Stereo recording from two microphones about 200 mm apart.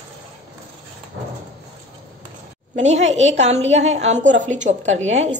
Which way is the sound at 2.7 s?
35° right (ahead or behind).